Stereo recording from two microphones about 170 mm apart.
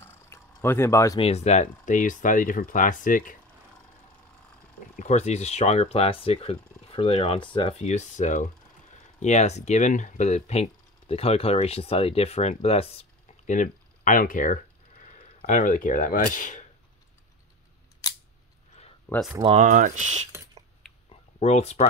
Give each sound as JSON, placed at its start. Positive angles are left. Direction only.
{"t": 0.0, "sound": "a sound", "side_deg": 15}
{"t": 1.2, "sound": "speech", "side_deg": 40}
{"t": 4.9, "sound": "speech", "side_deg": 45}
{"t": 7.8, "sound": "speech", "side_deg": 45}
{"t": 19.4, "sound": "speech", "side_deg": -45}
{"t": 21.1, "sound": "a sound", "side_deg": 40}